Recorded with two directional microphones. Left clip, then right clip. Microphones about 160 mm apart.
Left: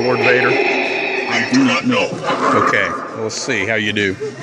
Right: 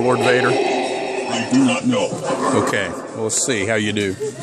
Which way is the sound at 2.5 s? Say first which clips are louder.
Left 5 dB; 25° right (ahead or behind).